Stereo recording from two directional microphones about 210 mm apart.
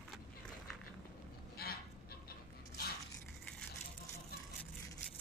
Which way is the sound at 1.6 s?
45° left (ahead or behind).